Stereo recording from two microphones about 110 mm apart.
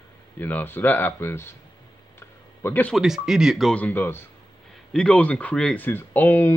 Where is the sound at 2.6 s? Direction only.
15° left (ahead or behind).